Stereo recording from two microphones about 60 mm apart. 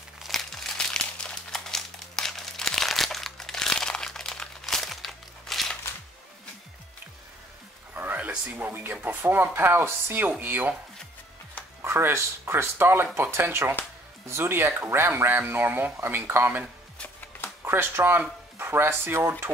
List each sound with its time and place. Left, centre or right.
0.2 s crumpling: centre
7.9 s a sound: right
8.5 s speech: right
11.8 s speech: right
17.6 s speech: right